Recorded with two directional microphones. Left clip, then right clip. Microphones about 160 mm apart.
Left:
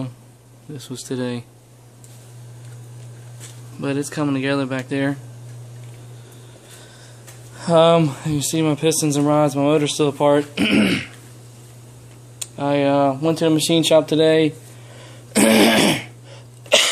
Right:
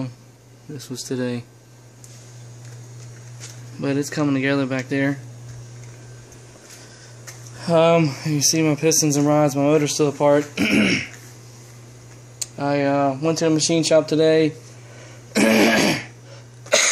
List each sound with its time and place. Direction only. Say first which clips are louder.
0.7 s speech: even; centre (ahead or behind)
3.8 s speech: right 1 dB; 15° right (ahead or behind)
7.5 s speech: left 2 dB; 10° left (ahead or behind)
12.5 s speech: left 2 dB; 5° left (ahead or behind)
12.8 s speech: left 3 dB; 15° left (ahead or behind)
13.2 s speech: left 1 dB; 35° left (ahead or behind)
13.9 s speech: left 1 dB; 15° left (ahead or behind)
15.0 s throat clearing: left 2 dB; 10° left (ahead or behind); by 16.9 s 30° left (ahead or behind)